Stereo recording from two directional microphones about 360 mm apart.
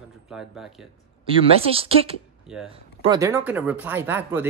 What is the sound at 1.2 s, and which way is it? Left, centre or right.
Speech, centre.